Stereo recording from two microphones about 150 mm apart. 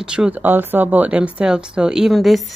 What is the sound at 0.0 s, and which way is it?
Speech, 5° right (ahead or behind).